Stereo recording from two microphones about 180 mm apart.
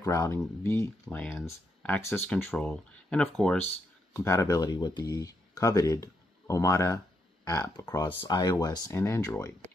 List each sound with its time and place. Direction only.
0.0 s speech: 15° left (ahead or behind)
1.0 s speech: 5° left (ahead or behind)
4.1 s speech: 15° left (ahead or behind)